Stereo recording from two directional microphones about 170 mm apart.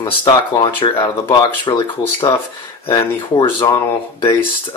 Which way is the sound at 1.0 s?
25° left (ahead or behind).